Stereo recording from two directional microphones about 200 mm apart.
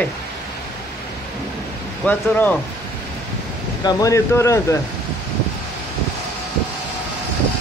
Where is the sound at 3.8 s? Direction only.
15° left (ahead or behind).